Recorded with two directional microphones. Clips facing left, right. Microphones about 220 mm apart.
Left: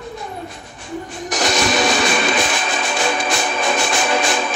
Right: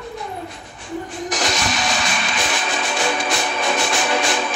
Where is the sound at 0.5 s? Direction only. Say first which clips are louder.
Even; 45° left (ahead or behind).